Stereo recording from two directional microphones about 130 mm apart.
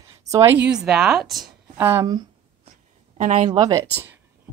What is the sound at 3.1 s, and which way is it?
Speech, 70° right (ahead or behind).